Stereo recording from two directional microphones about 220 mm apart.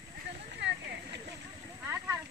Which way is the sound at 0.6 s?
50° right (ahead or behind).